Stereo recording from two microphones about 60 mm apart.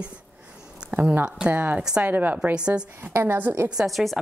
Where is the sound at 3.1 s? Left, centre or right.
Right.